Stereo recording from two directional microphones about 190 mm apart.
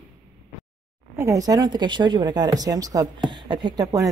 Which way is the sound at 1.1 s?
15° right (ahead or behind).